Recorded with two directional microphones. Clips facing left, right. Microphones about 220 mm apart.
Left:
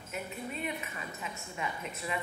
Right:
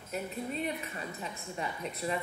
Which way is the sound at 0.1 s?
35° right (ahead or behind).